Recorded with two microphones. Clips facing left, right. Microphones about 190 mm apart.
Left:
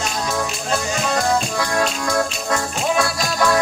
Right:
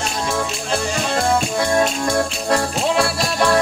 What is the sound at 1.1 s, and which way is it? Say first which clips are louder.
Music: right 1 dB; 25° right (ahead or behind).